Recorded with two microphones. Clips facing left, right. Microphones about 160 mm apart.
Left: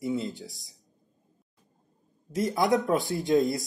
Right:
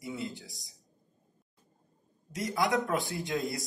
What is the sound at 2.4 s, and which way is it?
Speech, 25° left (ahead or behind).